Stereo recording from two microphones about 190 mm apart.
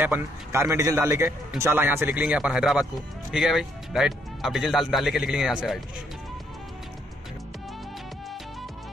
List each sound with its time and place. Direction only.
0.0 s a man's voice: 10° right (ahead or behind)